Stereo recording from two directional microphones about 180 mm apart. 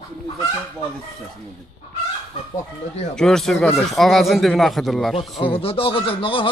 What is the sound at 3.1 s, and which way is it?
Speech, 5° left (ahead or behind).